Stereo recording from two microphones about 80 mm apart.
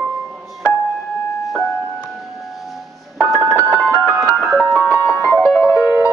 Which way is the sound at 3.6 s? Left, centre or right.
Right.